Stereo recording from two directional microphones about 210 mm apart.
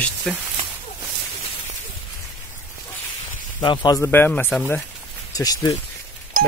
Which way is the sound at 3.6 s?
20° left (ahead or behind).